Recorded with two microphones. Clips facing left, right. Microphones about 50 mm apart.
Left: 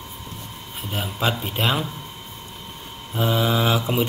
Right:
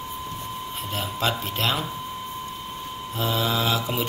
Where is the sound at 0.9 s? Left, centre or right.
Centre.